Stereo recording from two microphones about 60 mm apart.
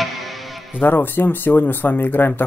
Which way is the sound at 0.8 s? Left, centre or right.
Left.